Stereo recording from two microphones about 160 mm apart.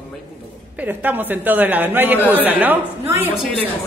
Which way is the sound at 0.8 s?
10° right (ahead or behind).